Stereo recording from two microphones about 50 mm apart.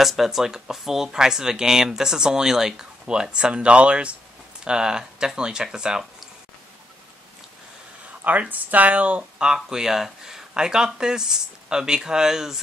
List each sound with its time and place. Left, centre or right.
0.0 s speech: centre
8.2 s speech: right
9.5 s speech: centre